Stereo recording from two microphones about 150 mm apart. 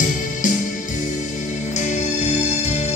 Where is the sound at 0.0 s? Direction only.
55° left (ahead or behind).